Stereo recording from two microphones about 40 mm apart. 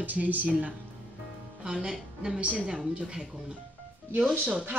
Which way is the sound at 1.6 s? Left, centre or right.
Centre.